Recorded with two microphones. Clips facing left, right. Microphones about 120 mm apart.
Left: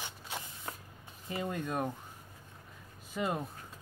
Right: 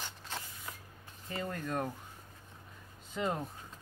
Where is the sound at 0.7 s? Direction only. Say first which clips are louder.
Left 6 dB; 40° left (ahead or behind).